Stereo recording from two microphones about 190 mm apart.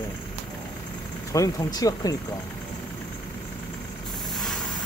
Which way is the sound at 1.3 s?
15° left (ahead or behind).